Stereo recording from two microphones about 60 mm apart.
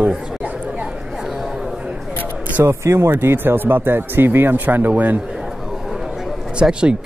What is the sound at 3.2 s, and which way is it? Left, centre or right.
Speech, right.